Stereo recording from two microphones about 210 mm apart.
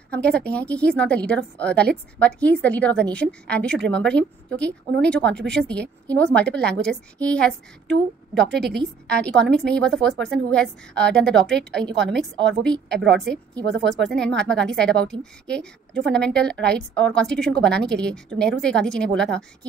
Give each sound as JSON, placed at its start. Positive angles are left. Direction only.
{"t": 0.1, "sound": "a woman's voice", "side_deg": 5}
{"t": 8.5, "sound": "a woman's voice", "side_deg": -50}
{"t": 9.1, "sound": "a woman's voice", "side_deg": 5}
{"t": 11.9, "sound": "a woman's voice", "side_deg": -55}
{"t": 12.2, "sound": "a woman's voice", "side_deg": 5}